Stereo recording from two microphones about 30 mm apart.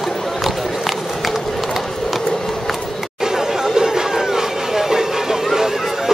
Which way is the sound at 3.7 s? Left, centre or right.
Centre.